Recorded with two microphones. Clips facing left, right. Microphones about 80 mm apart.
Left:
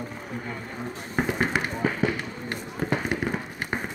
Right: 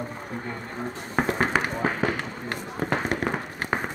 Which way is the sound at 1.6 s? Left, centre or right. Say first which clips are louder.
Even; right.